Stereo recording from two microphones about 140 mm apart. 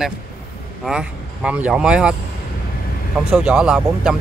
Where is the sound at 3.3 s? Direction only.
5° right (ahead or behind).